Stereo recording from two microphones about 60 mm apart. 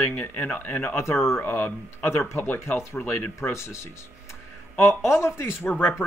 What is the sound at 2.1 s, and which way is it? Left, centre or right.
Speech, left.